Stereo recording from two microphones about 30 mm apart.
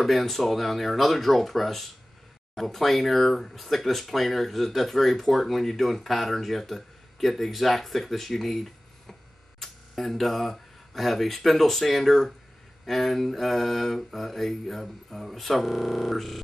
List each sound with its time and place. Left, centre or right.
0.0 s speech: centre